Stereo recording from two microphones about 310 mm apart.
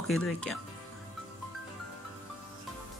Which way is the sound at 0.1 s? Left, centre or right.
Centre.